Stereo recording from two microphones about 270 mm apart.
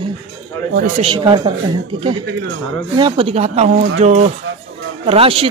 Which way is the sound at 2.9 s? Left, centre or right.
Centre.